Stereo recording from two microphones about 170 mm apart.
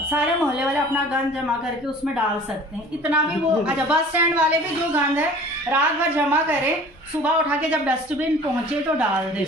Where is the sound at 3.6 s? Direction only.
5° right (ahead or behind).